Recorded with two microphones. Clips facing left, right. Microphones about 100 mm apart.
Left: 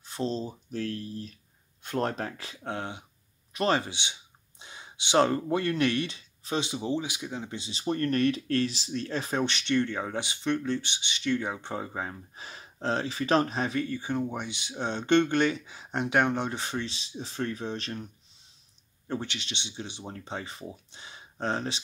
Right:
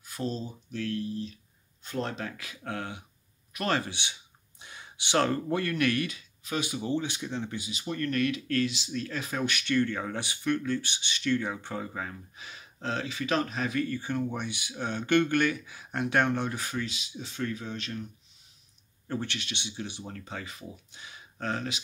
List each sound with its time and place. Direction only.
0.0 s speech: 25° left (ahead or behind)
1.8 s speech: 55° left (ahead or behind)
2.2 s speech: 30° left (ahead or behind); by 7.5 s 10° left (ahead or behind)
7.5 s speech: 30° left (ahead or behind)
13.8 s speech: 20° left (ahead or behind); by 18.0 s 35° left (ahead or behind)
19.0 s speech: 20° left (ahead or behind)